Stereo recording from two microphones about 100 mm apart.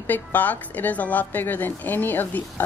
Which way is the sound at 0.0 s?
15° left (ahead or behind).